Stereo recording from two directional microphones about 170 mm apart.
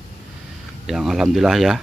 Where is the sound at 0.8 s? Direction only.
Centre (ahead or behind).